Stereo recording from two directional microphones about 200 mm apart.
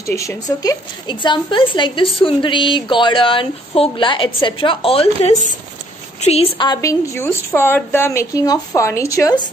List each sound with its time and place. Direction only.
0.0 s a woman's voice: 15° left (ahead or behind)